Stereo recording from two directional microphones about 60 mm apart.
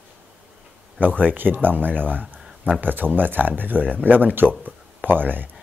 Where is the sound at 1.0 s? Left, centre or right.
Right.